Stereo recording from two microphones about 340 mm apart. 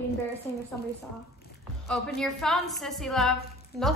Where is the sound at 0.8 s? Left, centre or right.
Left.